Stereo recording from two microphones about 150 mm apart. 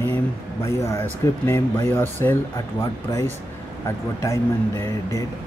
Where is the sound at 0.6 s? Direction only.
20° left (ahead or behind).